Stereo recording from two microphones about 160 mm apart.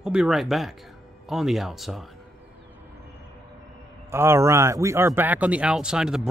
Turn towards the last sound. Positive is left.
turn(degrees=-5)  # may be behind; listen again after turning